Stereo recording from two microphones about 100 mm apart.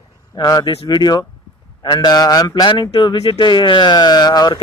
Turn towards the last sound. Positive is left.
turn(degrees=45)  # may be behind; listen again after turning